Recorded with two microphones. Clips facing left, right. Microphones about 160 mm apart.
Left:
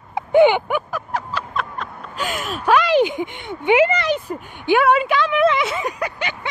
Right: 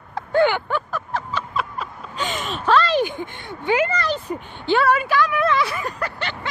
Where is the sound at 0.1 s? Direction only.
20° left (ahead or behind).